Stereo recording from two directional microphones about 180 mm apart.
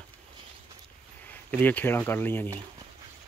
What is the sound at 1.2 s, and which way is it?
Speech, 10° left (ahead or behind).